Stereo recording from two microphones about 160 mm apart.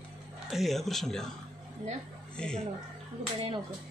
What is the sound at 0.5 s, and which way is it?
Speech, centre (ahead or behind).